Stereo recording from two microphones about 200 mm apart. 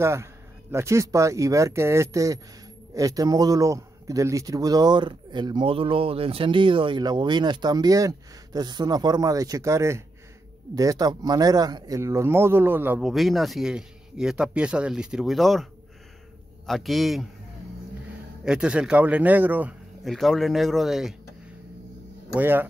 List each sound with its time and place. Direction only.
0.0 s a man's voice: 15° right (ahead or behind)
16.6 s speech: centre (ahead or behind)
18.4 s speech: 5° right (ahead or behind)
22.3 s speech: 10° right (ahead or behind)